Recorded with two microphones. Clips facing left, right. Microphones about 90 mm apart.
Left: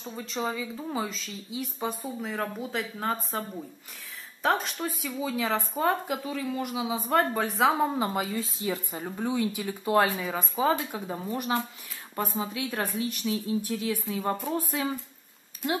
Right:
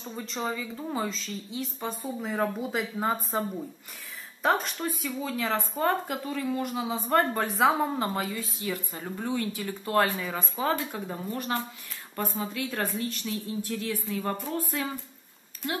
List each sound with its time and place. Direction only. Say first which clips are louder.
0.0 s a woman's voice: left 1 dB; centre (ahead or behind)
2.0 s a woman's voice: right 3 dB; 5° right (ahead or behind)
8.3 s a woman's voice: left 2 dB; 25° left (ahead or behind)
8.9 s a woman's voice: left 2 dB; 10° left (ahead or behind)